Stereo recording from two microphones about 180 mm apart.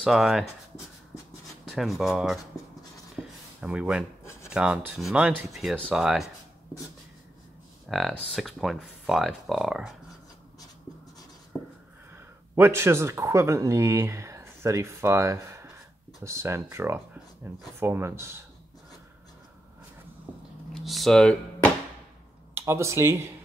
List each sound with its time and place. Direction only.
0.0 s speech: centre (ahead or behind)
1.7 s speech: centre (ahead or behind)
3.2 s a sound: 10° right (ahead or behind)
3.6 s speech: 5° right (ahead or behind)
4.2 s rub: 15° left (ahead or behind)
4.5 s speech: 5° right (ahead or behind)
7.9 s speech: centre (ahead or behind)
11.5 s writing: 5° left (ahead or behind)
12.5 s speech: 15° right (ahead or behind)
20.7 s speech: centre (ahead or behind)
22.5 s speech: 15° right (ahead or behind)